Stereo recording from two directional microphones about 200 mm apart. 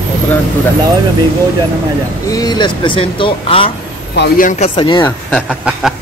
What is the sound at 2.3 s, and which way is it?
Speech, 20° left (ahead or behind).